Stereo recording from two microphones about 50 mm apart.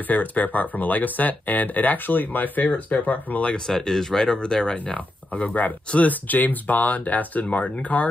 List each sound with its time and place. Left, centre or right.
0.1 s speech: left
3.5 s speech: centre
5.3 s speech: left